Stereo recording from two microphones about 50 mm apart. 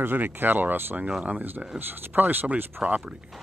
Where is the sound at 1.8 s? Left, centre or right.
Right.